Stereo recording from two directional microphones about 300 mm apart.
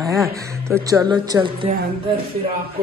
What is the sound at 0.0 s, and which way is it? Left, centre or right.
Speech, centre.